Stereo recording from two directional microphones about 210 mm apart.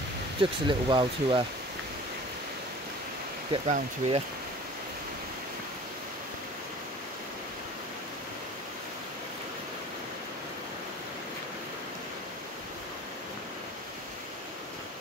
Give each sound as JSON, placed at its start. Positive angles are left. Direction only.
{"t": 0.4, "sound": "speech", "side_deg": -25}
{"t": 3.5, "sound": "speech", "side_deg": -30}